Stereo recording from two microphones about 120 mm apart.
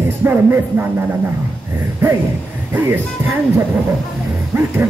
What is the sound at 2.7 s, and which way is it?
Speech, 15° right (ahead or behind).